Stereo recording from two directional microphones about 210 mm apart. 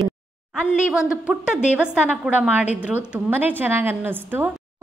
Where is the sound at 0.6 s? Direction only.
5° right (ahead or behind).